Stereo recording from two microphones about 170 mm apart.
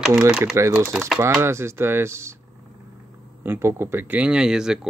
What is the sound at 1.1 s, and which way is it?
Speech, 15° right (ahead or behind).